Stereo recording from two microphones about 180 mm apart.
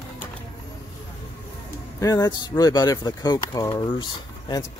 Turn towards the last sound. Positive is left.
turn(degrees=25)  # may be behind; listen again after turning